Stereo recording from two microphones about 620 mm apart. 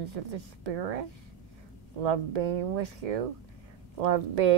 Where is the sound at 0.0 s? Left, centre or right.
Right.